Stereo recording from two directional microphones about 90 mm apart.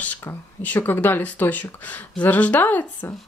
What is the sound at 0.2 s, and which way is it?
A woman's voice, 20° left (ahead or behind).